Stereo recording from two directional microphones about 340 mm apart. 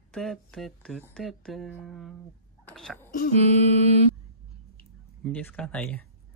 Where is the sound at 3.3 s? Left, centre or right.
Centre.